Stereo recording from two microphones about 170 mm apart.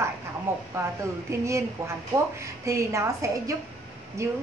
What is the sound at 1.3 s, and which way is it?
A woman's voice, 15° right (ahead or behind).